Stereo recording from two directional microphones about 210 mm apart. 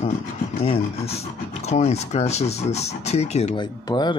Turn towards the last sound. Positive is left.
turn(degrees=20)  # may be behind; listen again after turning